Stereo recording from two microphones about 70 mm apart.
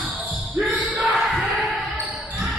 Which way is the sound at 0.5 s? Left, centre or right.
Right.